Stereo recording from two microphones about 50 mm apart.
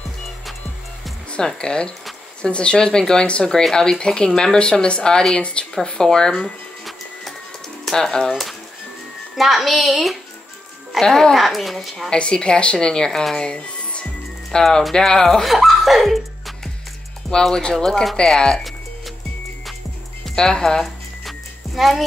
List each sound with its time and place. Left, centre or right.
1.3 s speech: centre
6.8 s printer: centre
7.9 s speech: centre
8.3 s speech: centre
11.0 s speech: centre
12.1 s speech: centre
14.5 s speech: centre
15.4 s speech: centre
17.3 s speech: centre
20.2 s speech: centre
20.8 s music: centre